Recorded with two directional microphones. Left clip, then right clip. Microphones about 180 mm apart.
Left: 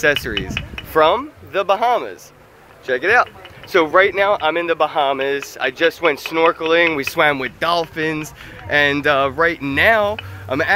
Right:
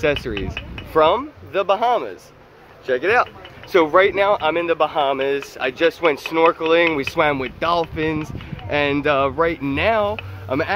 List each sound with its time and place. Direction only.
0.0 s speech: centre (ahead or behind)
0.6 s speech: 30° right (ahead or behind)
0.9 s speech: 5° left (ahead or behind)